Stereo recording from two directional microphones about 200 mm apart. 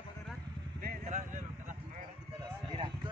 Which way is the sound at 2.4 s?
25° right (ahead or behind).